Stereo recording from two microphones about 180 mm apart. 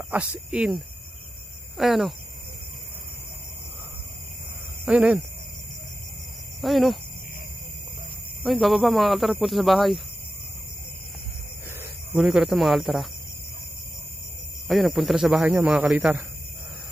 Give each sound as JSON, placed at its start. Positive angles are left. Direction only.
{"t": 0.1, "sound": "speech", "side_deg": -5}
{"t": 1.8, "sound": "speech", "side_deg": 0}
{"t": 4.8, "sound": "speech", "side_deg": -5}
{"t": 6.6, "sound": "speech", "side_deg": 0}
{"t": 8.4, "sound": "speech", "side_deg": 0}
{"t": 12.1, "sound": "speech", "side_deg": -5}
{"t": 14.7, "sound": "speech", "side_deg": 0}